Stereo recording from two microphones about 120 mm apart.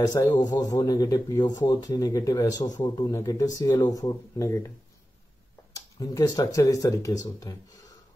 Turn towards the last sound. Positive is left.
turn(degrees=30)  # may be behind; listen again after turning